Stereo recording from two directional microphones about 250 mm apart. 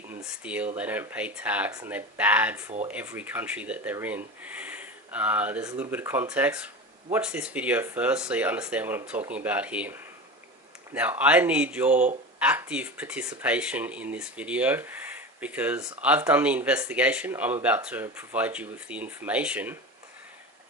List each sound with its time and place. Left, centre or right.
0.1 s speech: centre
11.9 s speech: right
12.4 s speech: centre